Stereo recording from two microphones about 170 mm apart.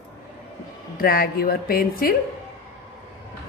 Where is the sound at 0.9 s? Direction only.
60° left (ahead or behind).